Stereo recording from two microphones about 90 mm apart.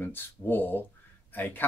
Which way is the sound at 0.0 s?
25° left (ahead or behind).